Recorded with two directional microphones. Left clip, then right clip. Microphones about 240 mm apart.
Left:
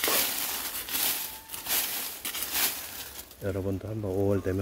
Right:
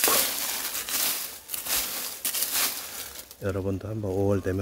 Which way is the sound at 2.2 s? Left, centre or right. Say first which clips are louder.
Right 4 dB; right.